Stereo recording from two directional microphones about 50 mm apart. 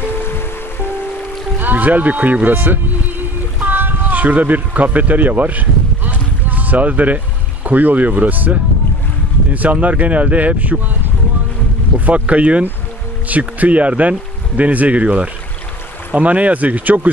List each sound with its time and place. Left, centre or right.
0.2 s music: left
1.6 s speech: right
3.5 s a sound: right
7.6 s speech: right
12.1 s speech: right